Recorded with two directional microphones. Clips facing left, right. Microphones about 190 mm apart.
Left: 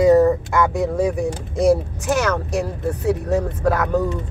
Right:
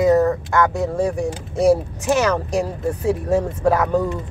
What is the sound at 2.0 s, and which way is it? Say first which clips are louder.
Speech: right 2 dB; 10° right (ahead or behind).